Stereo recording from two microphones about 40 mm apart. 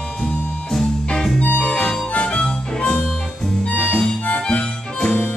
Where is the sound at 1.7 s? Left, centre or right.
Left.